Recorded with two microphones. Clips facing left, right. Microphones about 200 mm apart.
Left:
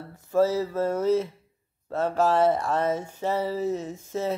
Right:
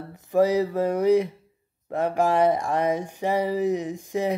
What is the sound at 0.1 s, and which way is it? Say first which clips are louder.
Mantra: right 2 dB; 20° right (ahead or behind).